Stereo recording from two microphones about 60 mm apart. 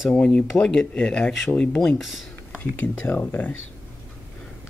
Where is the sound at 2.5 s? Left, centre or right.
Left.